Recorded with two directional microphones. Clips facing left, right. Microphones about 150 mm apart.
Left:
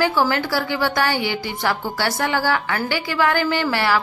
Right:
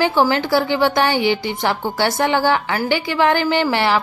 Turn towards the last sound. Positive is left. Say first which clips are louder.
# right 3 dB
turn(degrees=-20)  # may be behind; listen again after turning